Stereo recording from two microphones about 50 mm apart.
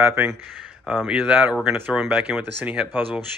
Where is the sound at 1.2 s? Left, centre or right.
Right.